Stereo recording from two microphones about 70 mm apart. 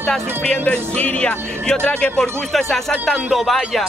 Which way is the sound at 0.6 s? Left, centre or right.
Left.